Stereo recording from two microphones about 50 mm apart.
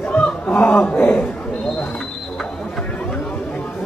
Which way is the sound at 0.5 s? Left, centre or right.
Left.